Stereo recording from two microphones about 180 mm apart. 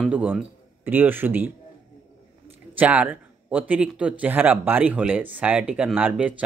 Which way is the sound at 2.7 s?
10° right (ahead or behind).